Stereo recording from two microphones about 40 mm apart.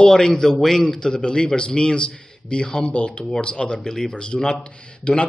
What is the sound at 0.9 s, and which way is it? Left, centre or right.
A man's voice, centre.